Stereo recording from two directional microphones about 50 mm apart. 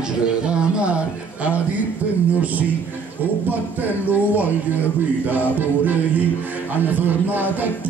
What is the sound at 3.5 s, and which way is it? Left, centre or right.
Speech, right.